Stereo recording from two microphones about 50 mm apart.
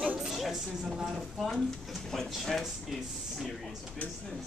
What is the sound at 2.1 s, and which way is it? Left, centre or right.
Speech, centre.